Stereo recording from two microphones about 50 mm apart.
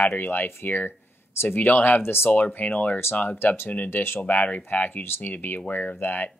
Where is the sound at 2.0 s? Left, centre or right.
Left.